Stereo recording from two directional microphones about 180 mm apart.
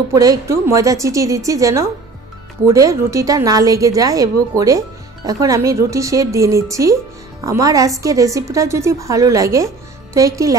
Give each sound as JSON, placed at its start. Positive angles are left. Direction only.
{"t": 0.1, "sound": "a woman's voice", "side_deg": -20}